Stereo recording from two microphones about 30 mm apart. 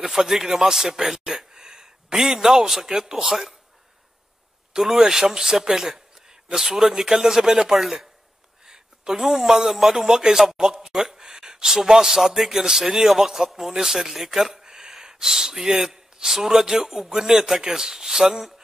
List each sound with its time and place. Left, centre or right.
0.0 s speech: centre
4.7 s speech: centre
8.6 s a sound: right
9.2 s speech: centre